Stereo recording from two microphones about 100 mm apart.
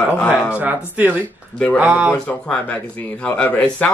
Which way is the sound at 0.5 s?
15° right (ahead or behind).